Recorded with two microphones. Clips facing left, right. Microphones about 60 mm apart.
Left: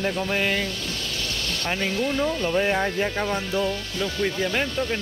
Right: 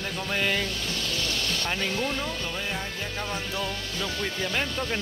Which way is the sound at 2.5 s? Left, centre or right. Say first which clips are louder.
Left 10 dB; left.